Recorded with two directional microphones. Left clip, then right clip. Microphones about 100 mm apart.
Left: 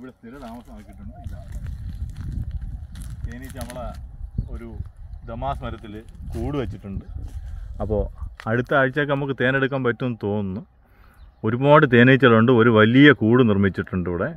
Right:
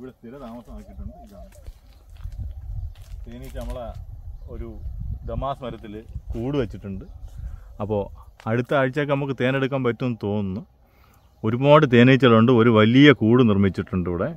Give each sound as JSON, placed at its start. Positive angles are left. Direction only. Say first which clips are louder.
{"t": 5.2, "sound": "speech", "louder": "even", "side_deg": -40}
{"t": 7.7, "sound": "speech", "louder": "left 1 dB", "side_deg": -15}